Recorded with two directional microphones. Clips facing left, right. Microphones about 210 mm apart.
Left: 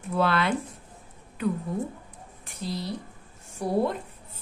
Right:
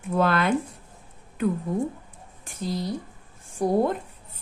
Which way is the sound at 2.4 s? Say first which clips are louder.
Right 4 dB; 45° right (ahead or behind).